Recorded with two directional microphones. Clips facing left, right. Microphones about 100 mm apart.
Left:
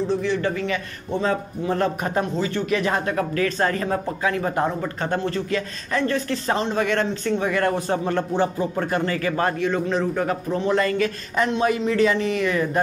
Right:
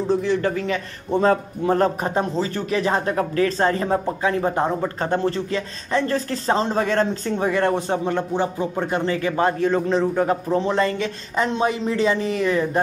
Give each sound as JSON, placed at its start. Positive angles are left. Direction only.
{"t": 0.2, "sound": "a man's voice", "side_deg": -40}
{"t": 2.1, "sound": "speech", "side_deg": -30}